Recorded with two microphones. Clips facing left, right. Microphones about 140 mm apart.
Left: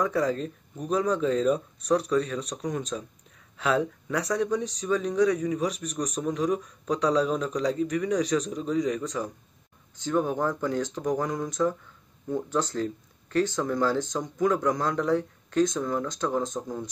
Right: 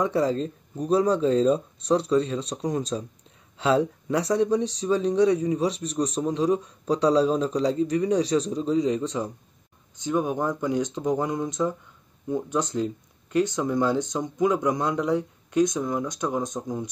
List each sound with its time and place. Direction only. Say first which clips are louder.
0.0 s speech: right 2 dB; 30° right (ahead or behind)